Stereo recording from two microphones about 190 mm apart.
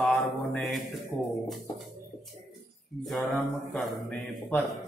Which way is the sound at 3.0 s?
Centre (ahead or behind).